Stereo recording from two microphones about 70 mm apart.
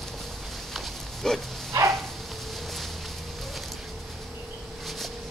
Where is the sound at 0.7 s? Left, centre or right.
Centre.